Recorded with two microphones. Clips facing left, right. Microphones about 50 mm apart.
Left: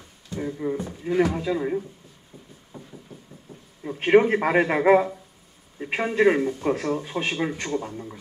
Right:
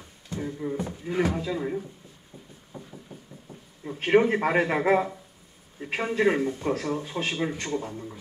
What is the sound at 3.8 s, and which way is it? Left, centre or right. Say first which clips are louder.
Speech: left 3 dB; left.